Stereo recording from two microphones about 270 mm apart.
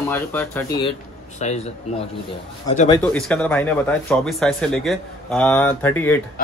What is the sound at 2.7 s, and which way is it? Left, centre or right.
Speech, left.